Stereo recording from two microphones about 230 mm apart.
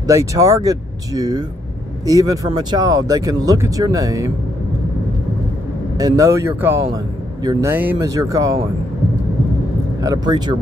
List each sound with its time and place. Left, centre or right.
0.0 s speech: centre
5.9 s speech: centre
10.0 s speech: centre